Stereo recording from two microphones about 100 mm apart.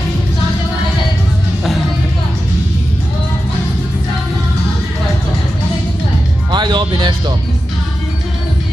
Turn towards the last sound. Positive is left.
turn(degrees=-50)  # may be behind; listen again after turning